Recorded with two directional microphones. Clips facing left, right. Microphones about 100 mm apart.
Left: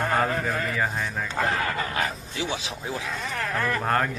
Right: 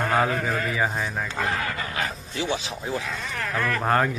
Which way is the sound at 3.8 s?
5° right (ahead or behind).